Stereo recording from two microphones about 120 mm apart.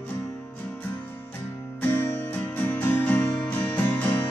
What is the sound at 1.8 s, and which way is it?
Music, 15° left (ahead or behind).